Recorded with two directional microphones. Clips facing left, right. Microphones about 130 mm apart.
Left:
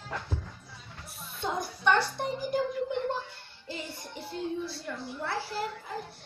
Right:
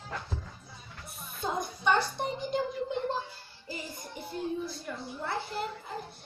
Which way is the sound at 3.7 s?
15° right (ahead or behind).